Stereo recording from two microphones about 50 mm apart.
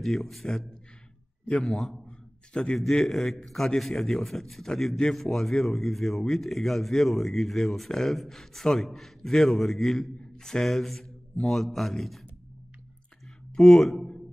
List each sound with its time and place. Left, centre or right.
0.0 s speech: centre
1.4 s a man's voice: left
1.7 s speech: centre
2.0 s a sound: centre
2.9 s speech: centre
10.3 s speech: centre
13.6 s a man's voice: centre